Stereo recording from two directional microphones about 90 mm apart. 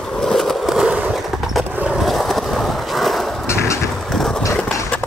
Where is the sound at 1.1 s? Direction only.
Centre (ahead or behind).